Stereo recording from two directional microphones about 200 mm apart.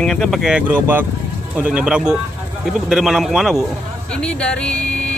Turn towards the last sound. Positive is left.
turn(degrees=5)  # may be behind; listen again after turning